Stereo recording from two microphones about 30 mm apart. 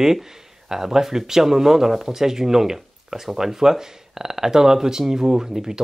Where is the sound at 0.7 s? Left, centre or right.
Centre.